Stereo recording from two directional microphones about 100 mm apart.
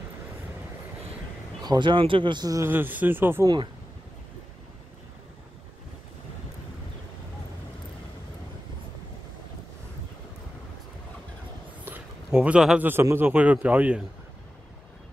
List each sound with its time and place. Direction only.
1.6 s speech: 45° right (ahead or behind)
2.5 s speech: 20° right (ahead or behind)
12.3 s a man's voice: 10° right (ahead or behind)
12.8 s a man's voice: 25° right (ahead or behind)